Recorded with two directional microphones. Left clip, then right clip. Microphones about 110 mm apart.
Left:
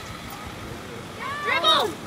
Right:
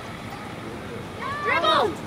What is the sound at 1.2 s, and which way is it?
Boat, 15° left (ahead or behind).